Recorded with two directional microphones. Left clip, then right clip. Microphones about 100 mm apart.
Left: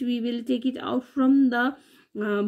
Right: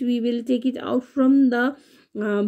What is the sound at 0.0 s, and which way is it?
Speech, 35° right (ahead or behind).